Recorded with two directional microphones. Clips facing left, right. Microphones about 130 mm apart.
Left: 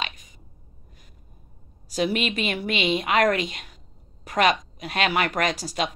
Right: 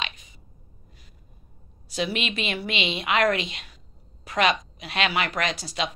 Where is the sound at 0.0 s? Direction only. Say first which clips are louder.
Left 2 dB; 40° left (ahead or behind).